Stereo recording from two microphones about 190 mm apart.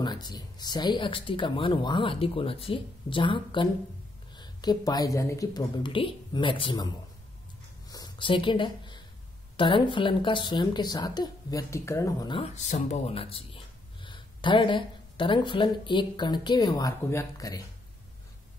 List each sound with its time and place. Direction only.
0.0 s speech: 20° left (ahead or behind)
7.9 s a sound: 25° left (ahead or behind)
9.6 s speech: 25° left (ahead or behind)
12.5 s speech: 40° left (ahead or behind); by 17.6 s 20° left (ahead or behind)